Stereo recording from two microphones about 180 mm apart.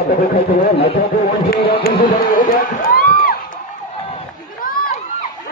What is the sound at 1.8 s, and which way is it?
Music, 55° left (ahead or behind).